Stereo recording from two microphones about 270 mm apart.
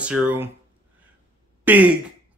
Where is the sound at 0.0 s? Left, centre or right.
Centre.